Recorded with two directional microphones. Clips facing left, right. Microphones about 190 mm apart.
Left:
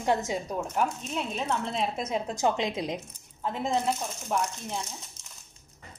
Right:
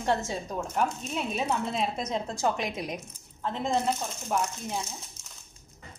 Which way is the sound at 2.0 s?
10° left (ahead or behind).